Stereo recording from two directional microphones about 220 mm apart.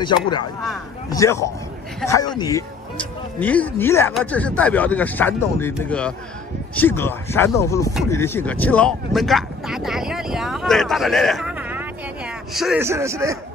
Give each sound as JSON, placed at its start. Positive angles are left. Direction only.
{"t": 0.0, "sound": "speech", "side_deg": 20}
{"t": 3.0, "sound": "speech", "side_deg": 5}
{"t": 12.8, "sound": "a man's voice", "side_deg": -10}